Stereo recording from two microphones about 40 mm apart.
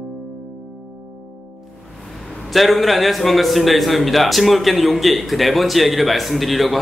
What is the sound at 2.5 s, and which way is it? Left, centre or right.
A man's voice, centre.